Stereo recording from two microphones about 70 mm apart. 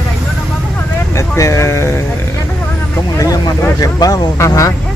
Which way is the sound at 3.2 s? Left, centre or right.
Left.